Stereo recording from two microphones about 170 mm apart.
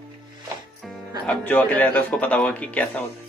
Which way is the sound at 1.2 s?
5° left (ahead or behind).